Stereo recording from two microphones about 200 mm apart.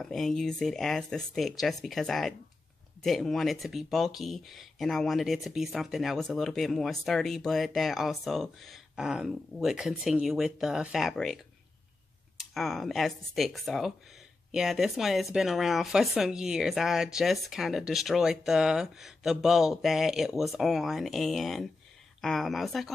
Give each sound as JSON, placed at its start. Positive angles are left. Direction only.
{"t": 0.0, "sound": "speech", "side_deg": 0}
{"t": 12.5, "sound": "speech", "side_deg": 0}